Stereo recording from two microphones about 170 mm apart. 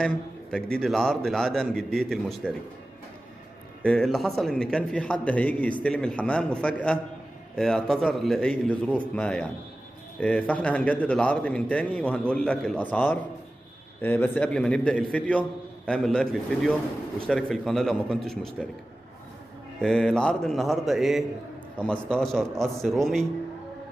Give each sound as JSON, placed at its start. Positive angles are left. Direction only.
{"t": 0.0, "sound": "a man's voice", "side_deg": 5}
{"t": 3.8, "sound": "a man's voice", "side_deg": 5}
{"t": 19.8, "sound": "a man's voice", "side_deg": 5}